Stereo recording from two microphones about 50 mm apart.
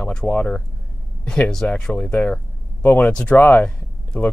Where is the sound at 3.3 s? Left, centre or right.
Left.